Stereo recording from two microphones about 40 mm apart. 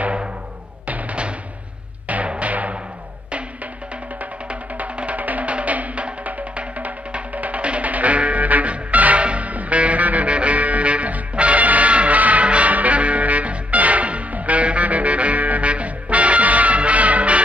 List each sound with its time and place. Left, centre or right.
0.8 s music: right
4.5 s music: right